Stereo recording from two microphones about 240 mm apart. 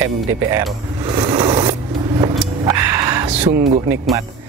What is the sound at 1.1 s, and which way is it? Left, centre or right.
Zipper, centre.